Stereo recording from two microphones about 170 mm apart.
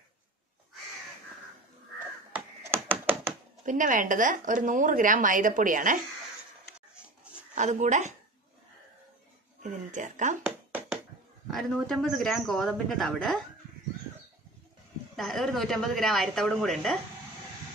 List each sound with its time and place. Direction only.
2.3 s computer keyboard: 10° right (ahead or behind)
3.6 s a woman's voice: 50° right (ahead or behind)
7.5 s a woman's voice: 45° right (ahead or behind)
9.6 s a woman's voice: 45° right (ahead or behind)
11.5 s speech: 5° left (ahead or behind)
15.1 s speech: centre (ahead or behind)